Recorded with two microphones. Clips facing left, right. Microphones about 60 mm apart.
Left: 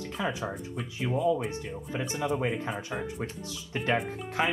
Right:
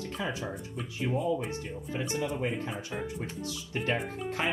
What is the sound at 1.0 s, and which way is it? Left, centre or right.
Speech, left.